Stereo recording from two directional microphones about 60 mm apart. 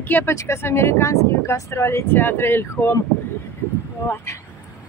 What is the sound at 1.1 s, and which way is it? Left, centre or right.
Speech, left.